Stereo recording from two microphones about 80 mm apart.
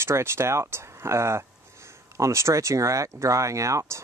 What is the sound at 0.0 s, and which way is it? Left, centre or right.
Speech, right.